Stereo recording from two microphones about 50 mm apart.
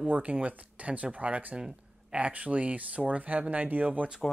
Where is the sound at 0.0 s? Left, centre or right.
Right.